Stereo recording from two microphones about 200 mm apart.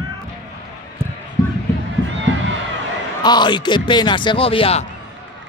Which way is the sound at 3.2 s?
20° left (ahead or behind).